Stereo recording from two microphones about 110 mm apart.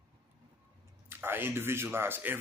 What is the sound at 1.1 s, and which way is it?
A man's voice, 20° right (ahead or behind).